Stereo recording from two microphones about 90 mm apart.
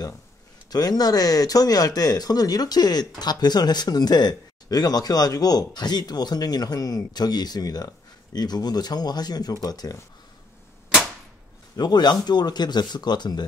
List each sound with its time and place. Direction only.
0.7 s speech: 45° left (ahead or behind)
11.7 s speech: 50° left (ahead or behind)